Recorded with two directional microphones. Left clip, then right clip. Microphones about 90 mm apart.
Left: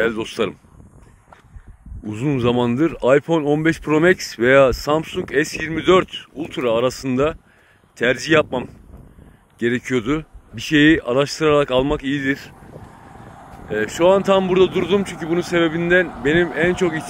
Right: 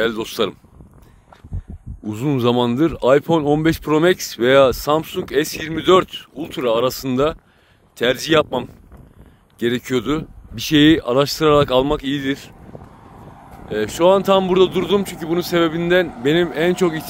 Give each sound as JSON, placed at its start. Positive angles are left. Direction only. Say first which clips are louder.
{"t": 0.0, "sound": "speech", "louder": "right 1 dB", "side_deg": -40}
{"t": 2.0, "sound": "speech", "louder": "right 1 dB", "side_deg": -40}
{"t": 6.9, "sound": "speech", "louder": "right 1 dB", "side_deg": -35}
{"t": 13.7, "sound": "speech", "louder": "right 1 dB", "side_deg": -30}